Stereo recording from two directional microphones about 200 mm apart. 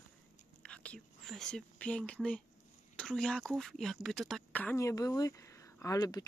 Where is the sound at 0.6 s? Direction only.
5° left (ahead or behind).